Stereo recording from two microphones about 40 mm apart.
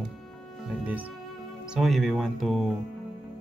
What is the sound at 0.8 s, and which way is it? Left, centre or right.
Speech, right.